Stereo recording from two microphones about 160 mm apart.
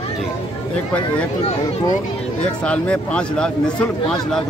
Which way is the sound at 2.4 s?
5° left (ahead or behind).